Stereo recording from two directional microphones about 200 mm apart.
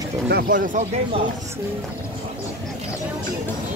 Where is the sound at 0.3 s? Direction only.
45° right (ahead or behind).